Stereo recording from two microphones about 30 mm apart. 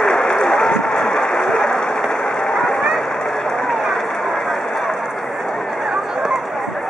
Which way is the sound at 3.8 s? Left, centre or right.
Centre.